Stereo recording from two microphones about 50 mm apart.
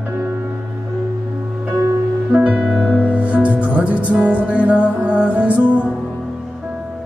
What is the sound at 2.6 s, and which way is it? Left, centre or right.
Music, centre.